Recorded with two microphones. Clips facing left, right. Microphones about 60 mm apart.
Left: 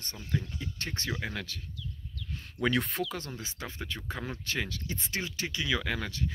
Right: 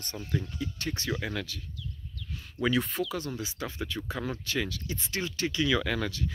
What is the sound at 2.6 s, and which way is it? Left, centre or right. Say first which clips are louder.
Speech: right 1 dB; left.